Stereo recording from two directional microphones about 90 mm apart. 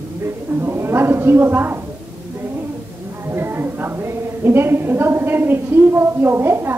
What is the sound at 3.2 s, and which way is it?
A woman's voice, 25° right (ahead or behind).